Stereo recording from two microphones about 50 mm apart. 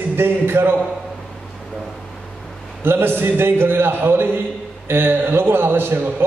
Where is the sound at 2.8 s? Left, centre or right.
Right.